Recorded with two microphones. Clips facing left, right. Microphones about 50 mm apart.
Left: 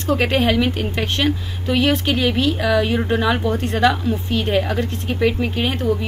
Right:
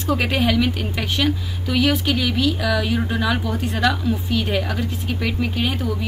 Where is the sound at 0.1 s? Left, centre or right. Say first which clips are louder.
Left 2 dB; left.